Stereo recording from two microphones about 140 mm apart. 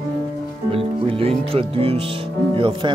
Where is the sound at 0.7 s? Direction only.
40° right (ahead or behind).